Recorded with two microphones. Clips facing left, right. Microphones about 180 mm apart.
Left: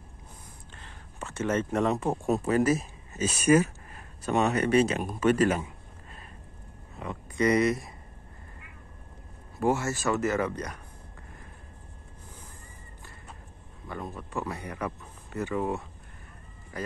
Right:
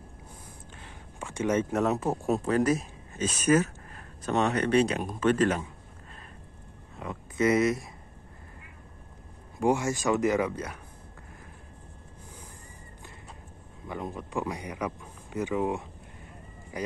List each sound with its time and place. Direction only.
0.7 s speech: 10° right (ahead or behind); by 5.7 s 10° left (ahead or behind)
7.0 s speech: centre (ahead or behind)
9.6 s speech: 15° right (ahead or behind)
13.8 s speech: 15° right (ahead or behind)